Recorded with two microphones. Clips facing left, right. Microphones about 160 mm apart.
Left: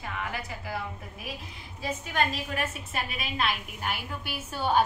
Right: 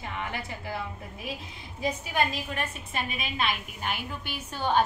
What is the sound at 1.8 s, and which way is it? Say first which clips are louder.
A woman's voice: right 1 dB; 10° right (ahead or behind).